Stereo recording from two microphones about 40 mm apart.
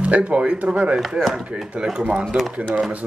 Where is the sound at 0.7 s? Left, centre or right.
Right.